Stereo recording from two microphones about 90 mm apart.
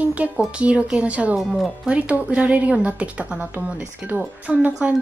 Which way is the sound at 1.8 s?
15° right (ahead or behind).